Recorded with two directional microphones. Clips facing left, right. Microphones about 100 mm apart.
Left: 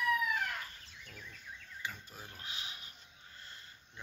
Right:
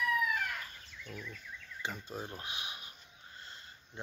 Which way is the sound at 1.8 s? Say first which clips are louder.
Right 6 dB; 25° right (ahead or behind).